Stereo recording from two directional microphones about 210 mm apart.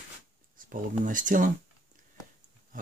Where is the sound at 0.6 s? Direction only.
40° right (ahead or behind).